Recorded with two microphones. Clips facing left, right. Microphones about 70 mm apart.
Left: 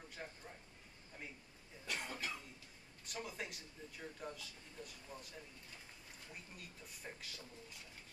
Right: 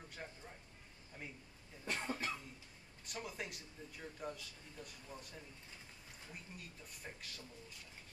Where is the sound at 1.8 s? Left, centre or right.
Right.